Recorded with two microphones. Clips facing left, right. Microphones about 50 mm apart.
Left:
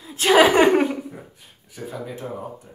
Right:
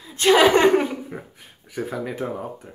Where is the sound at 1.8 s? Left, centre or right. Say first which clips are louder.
Right 5 dB; right.